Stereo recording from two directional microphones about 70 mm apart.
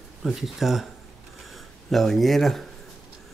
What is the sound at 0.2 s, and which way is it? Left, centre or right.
Speech, centre.